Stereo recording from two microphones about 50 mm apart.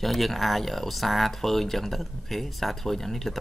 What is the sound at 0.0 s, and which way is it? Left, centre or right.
Speech, centre.